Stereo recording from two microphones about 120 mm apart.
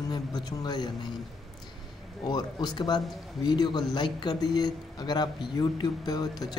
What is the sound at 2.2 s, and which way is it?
A man's voice, 35° left (ahead or behind).